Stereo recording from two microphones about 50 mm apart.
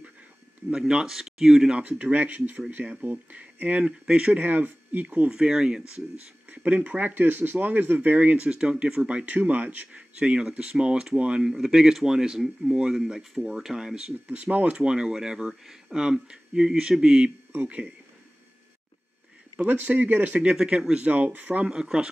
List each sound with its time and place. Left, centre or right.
0.7 s speech: centre
1.9 s speech: right
4.0 s speech: centre
4.4 s speech: right
5.3 s speech: centre
6.5 s speech: right
8.5 s speech: centre
14.2 s speech: right
14.8 s speech: centre
19.7 s speech: right
20.5 s speech: centre; by 21.6 s right
21.8 s speech: centre